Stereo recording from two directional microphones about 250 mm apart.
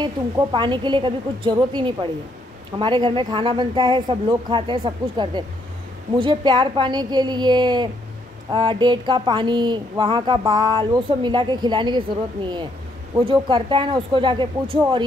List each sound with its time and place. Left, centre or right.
0.0 s speech: centre
13.1 s speech: centre